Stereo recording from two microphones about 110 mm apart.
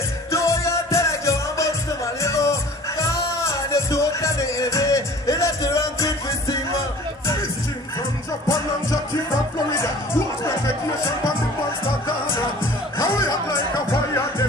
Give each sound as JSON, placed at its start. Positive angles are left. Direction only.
{"t": 0.3, "sound": "music", "side_deg": 25}
{"t": 9.8, "sound": "music", "side_deg": 25}
{"t": 12.9, "sound": "music", "side_deg": 30}